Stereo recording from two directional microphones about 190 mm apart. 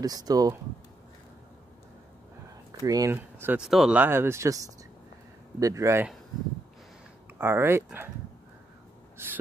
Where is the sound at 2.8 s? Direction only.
20° right (ahead or behind).